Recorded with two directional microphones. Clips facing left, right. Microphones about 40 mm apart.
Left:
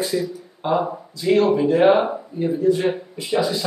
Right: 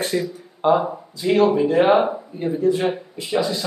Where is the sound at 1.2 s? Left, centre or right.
Centre.